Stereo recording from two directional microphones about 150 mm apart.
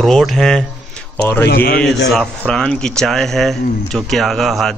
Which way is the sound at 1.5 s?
90° left.